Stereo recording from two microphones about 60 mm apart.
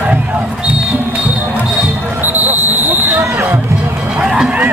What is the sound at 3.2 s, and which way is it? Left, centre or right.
Music, right.